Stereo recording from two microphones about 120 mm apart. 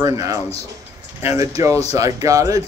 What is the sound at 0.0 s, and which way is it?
Speech, 30° right (ahead or behind).